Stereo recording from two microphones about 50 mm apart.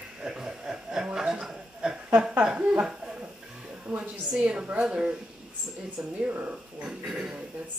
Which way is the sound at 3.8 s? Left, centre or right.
Right.